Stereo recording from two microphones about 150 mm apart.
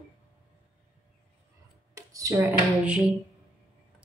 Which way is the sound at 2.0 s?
20° right (ahead or behind).